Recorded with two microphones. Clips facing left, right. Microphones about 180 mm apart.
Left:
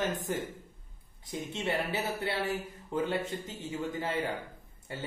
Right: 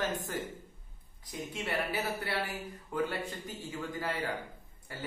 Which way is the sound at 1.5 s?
25° left (ahead or behind).